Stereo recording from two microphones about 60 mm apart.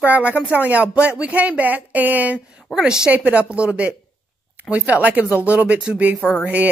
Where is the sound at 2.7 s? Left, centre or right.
Centre.